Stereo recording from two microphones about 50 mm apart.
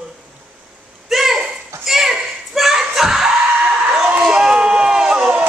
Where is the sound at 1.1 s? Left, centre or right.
Centre.